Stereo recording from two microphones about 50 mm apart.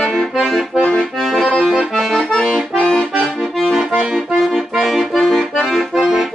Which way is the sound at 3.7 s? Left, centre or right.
Centre.